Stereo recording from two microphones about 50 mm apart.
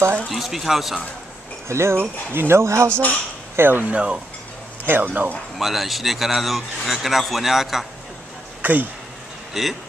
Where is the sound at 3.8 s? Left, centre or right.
Right.